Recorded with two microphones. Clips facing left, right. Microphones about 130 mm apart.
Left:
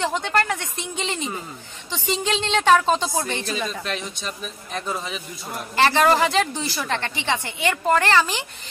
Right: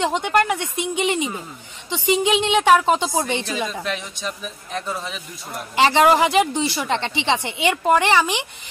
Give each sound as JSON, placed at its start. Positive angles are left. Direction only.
{"t": 0.0, "sound": "a woman's voice", "side_deg": -15}
{"t": 4.7, "sound": "a man's voice", "side_deg": 0}
{"t": 5.8, "sound": "a woman's voice", "side_deg": -15}